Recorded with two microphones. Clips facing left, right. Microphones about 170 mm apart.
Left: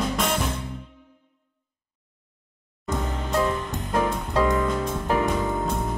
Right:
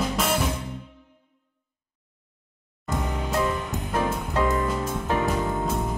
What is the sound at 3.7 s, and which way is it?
Music, 5° right (ahead or behind).